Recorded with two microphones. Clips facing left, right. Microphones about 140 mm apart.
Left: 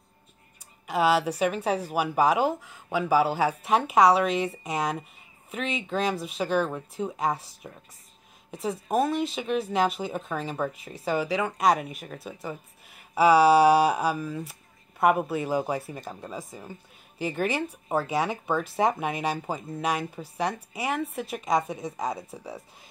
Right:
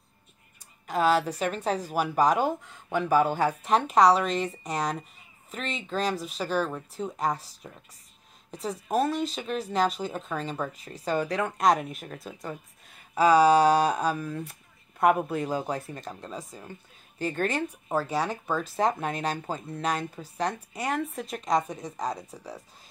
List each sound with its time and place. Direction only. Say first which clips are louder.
0.8 s speech: left 1 dB; 10° left (ahead or behind)
22.3 s speech: left 3 dB; 15° left (ahead or behind)